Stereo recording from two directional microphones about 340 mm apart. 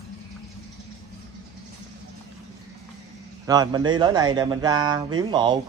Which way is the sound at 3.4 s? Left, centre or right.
Centre.